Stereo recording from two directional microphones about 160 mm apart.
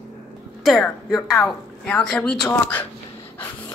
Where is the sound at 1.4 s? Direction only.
5° left (ahead or behind).